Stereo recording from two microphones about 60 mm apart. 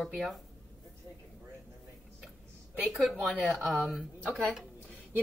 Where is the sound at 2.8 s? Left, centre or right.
Centre.